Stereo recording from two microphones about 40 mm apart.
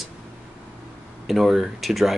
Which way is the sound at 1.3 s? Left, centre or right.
Centre.